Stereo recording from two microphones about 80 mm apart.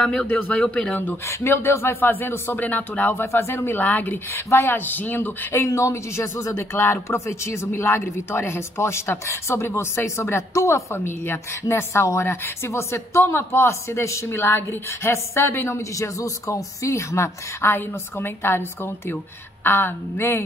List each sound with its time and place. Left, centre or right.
0.0 s speech: centre
0.3 s speech: left
4.3 s speech: left
5.5 s speech: left